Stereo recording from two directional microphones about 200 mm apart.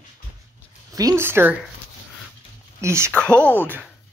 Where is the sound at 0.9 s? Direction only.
15° right (ahead or behind).